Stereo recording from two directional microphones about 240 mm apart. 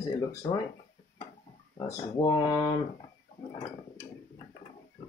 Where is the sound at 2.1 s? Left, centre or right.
Centre.